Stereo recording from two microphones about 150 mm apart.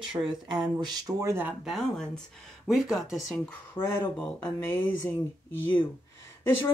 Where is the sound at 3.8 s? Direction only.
10° left (ahead or behind).